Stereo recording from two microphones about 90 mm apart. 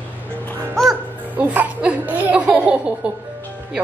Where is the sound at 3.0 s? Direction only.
15° right (ahead or behind).